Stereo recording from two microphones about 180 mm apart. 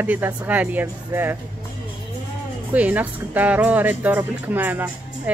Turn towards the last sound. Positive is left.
turn(degrees=-10)  # may be behind; listen again after turning